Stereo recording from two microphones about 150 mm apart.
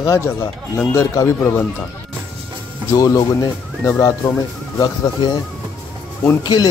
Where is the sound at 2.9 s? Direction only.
25° left (ahead or behind).